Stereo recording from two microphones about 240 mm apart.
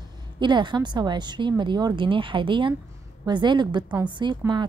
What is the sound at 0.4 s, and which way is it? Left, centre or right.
A woman's voice, centre.